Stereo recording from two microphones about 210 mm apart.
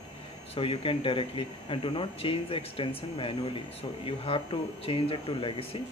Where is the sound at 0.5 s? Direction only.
25° left (ahead or behind).